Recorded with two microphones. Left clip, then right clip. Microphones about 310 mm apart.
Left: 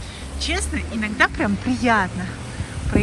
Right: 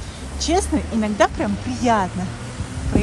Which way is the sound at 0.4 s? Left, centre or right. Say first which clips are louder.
Right 4 dB; centre.